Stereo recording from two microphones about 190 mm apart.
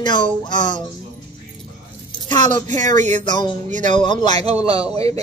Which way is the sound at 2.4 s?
40° right (ahead or behind).